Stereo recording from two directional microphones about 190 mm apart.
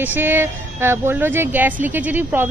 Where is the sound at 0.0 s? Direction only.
10° right (ahead or behind).